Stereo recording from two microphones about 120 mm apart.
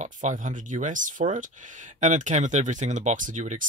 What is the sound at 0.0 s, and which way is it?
Speech, 90° right.